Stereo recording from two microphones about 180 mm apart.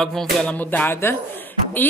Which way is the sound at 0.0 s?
5° left (ahead or behind).